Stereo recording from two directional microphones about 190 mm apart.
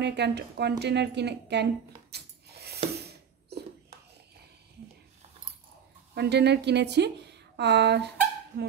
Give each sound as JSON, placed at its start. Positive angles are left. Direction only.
{"t": 0.0, "sound": "a woman's voice", "side_deg": -60}
{"t": 3.0, "sound": "a sound", "side_deg": -60}
{"t": 6.1, "sound": "a woman's voice", "side_deg": -60}
{"t": 8.5, "sound": "speech", "side_deg": -50}